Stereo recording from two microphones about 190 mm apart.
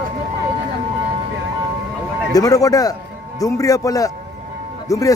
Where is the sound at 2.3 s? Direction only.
20° left (ahead or behind).